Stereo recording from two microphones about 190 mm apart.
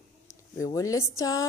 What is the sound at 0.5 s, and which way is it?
Speech, 15° left (ahead or behind).